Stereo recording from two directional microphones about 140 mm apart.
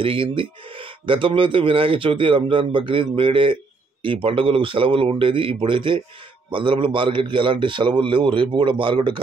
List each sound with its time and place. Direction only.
0.0 s speech: 40° right (ahead or behind)